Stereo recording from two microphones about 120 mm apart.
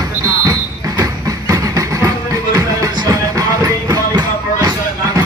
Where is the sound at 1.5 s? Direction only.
25° right (ahead or behind).